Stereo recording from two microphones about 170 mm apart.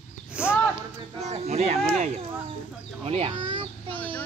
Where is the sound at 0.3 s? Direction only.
5° right (ahead or behind).